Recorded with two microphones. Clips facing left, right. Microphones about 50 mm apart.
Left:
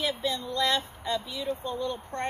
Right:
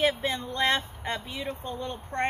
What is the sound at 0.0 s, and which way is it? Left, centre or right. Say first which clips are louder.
Speech: right 3 dB; right.